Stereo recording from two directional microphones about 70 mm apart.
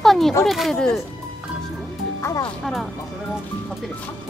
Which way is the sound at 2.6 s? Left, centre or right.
Centre.